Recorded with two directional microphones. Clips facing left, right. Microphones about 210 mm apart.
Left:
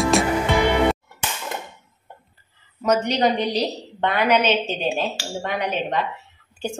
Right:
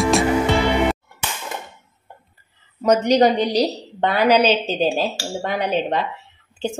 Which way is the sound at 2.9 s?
40° right (ahead or behind).